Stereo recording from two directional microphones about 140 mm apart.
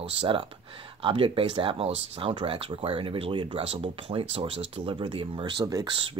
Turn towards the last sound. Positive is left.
turn(degrees=-30)  # may be behind; listen again after turning